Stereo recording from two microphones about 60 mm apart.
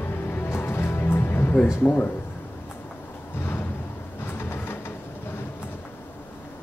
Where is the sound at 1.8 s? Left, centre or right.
Left.